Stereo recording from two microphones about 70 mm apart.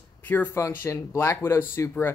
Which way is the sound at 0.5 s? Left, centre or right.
Left.